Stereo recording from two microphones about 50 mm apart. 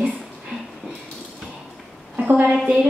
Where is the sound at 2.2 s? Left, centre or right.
Right.